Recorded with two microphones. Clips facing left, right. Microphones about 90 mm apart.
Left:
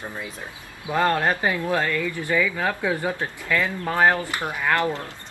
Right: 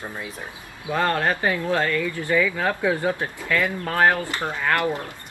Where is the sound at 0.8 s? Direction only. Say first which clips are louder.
Left 1 dB; 15° left (ahead or behind).